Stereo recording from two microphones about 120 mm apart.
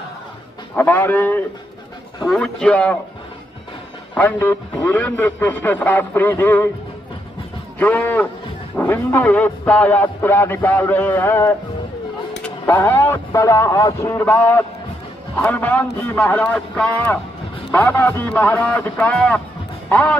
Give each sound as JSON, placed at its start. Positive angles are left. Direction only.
{"t": 0.7, "sound": "speech", "side_deg": 15}
{"t": 2.2, "sound": "speech", "side_deg": 5}
{"t": 4.1, "sound": "speech", "side_deg": 15}
{"t": 7.8, "sound": "speech", "side_deg": 15}
{"t": 14.0, "sound": "speech", "side_deg": 15}